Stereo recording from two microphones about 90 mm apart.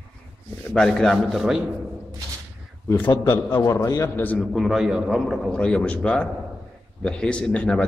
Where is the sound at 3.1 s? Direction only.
30° left (ahead or behind).